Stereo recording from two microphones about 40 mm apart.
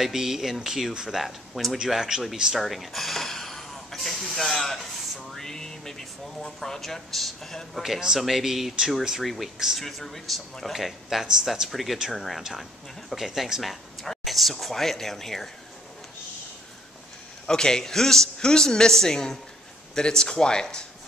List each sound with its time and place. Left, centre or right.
0.0 s speech: centre
1.2 s speech: centre
1.9 s speech: centre
2.5 s hiss: centre
4.4 s speech: centre
7.8 s speech: centre
17.5 s a woman's voice: centre